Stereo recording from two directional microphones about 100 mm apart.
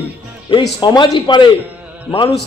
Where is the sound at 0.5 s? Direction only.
50° left (ahead or behind).